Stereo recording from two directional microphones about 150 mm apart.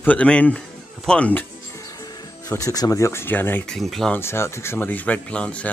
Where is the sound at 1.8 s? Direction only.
25° left (ahead or behind); by 4.2 s centre (ahead or behind).